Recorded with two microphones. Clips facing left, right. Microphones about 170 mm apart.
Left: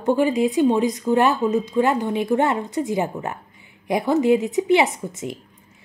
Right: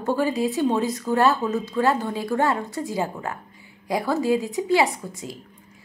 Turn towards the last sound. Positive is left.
turn(degrees=25)  # may be behind; listen again after turning